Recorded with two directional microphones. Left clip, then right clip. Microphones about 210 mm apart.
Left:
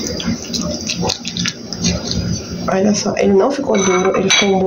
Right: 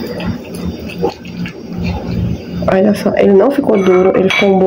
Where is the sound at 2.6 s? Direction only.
30° right (ahead or behind).